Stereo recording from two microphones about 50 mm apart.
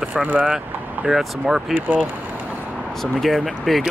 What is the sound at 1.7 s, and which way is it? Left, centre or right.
Speech, right.